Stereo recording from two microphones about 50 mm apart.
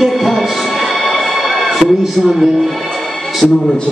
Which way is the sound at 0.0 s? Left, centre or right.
Centre.